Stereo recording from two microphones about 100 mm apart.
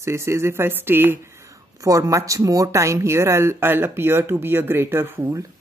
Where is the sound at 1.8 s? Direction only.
35° right (ahead or behind).